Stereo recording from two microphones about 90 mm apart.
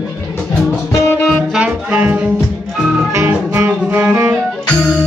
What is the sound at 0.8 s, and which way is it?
Music, 30° left (ahead or behind).